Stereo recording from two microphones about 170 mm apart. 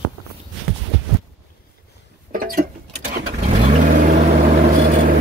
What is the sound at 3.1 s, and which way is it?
Vehicle, 45° right (ahead or behind).